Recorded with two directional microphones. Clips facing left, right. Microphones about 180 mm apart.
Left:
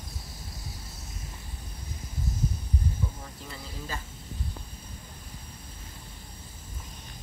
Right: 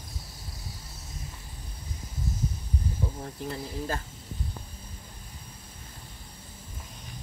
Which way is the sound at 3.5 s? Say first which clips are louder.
Right 7 dB; 55° right (ahead or behind).